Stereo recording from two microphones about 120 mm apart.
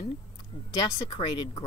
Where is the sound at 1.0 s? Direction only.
40° left (ahead or behind).